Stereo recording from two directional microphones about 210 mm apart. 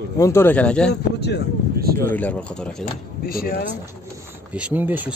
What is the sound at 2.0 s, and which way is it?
Speech, 5° left (ahead or behind).